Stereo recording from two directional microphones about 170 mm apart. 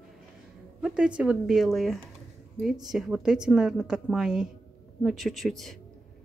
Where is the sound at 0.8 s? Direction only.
5° right (ahead or behind).